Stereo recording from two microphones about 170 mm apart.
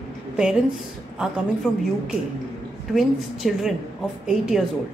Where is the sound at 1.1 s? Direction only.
5° right (ahead or behind).